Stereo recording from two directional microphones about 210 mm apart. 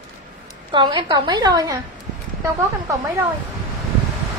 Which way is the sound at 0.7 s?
20° right (ahead or behind).